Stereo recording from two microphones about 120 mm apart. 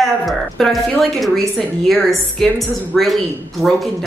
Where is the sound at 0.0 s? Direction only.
Centre (ahead or behind).